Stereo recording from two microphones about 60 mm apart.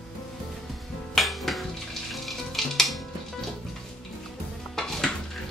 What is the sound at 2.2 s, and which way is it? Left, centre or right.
Music, centre.